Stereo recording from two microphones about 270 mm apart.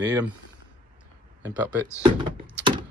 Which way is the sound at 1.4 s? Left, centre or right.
Centre.